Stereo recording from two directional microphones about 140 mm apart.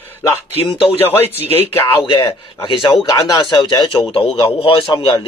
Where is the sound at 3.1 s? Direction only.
25° left (ahead or behind).